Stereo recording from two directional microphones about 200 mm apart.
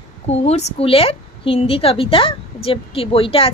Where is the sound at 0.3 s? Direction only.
35° left (ahead or behind).